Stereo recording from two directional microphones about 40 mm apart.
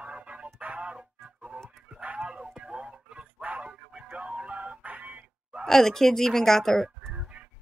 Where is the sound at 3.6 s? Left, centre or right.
Right.